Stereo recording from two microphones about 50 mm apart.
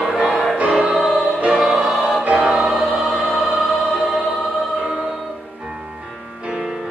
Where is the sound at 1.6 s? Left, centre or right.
Centre.